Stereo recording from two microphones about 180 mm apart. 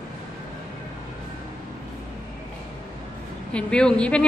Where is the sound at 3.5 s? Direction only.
5° left (ahead or behind).